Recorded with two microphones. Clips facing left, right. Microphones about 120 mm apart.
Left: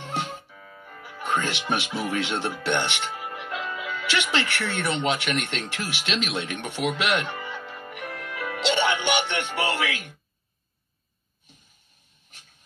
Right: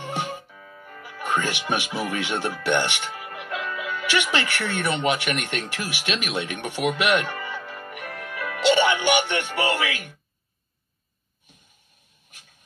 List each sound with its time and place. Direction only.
0.0 s music: 15° right (ahead or behind)
1.0 s speech: 15° right (ahead or behind)
3.5 s music: 15° left (ahead or behind)
4.0 s speech: 15° right (ahead or behind)
7.2 s music: 15° left (ahead or behind)
8.6 s music: 15° right (ahead or behind)
9.3 s speech: 15° right (ahead or behind)